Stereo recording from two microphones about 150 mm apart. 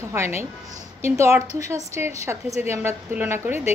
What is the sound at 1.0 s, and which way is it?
A woman's voice, 20° right (ahead or behind).